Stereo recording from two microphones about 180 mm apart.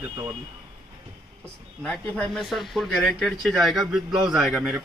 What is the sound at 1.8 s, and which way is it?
Speech, 5° left (ahead or behind).